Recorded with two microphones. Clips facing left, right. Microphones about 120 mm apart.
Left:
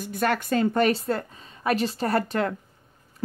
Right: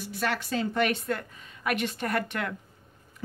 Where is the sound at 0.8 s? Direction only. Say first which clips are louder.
Left 5 dB; 35° left (ahead or behind).